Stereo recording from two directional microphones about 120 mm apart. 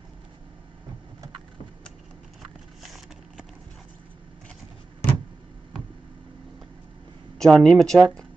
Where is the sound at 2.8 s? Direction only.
Centre (ahead or behind).